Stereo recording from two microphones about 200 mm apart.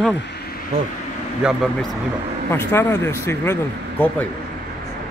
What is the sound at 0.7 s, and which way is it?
Speech, 30° right (ahead or behind).